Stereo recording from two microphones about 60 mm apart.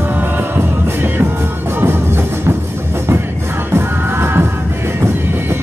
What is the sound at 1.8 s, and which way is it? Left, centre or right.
Music, right.